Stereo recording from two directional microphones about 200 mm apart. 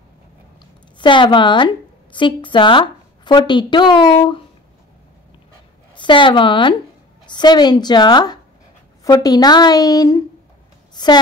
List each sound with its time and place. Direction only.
0.9 s a woman's voice: 25° left (ahead or behind)
5.9 s a woman's voice: 25° left (ahead or behind)